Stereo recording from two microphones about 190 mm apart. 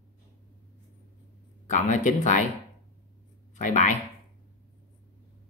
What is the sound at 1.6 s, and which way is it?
Speech, 40° left (ahead or behind).